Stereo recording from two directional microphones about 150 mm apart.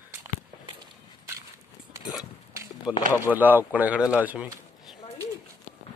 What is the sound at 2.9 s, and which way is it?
A man's voice, 5° right (ahead or behind).